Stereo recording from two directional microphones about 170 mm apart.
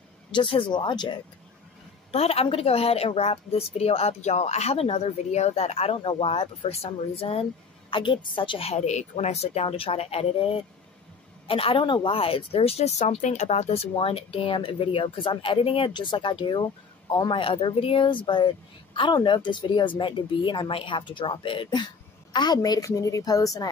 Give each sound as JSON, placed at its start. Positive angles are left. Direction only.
{"t": 0.3, "sound": "a woman's voice", "side_deg": 30}
{"t": 2.1, "sound": "a woman's voice", "side_deg": 35}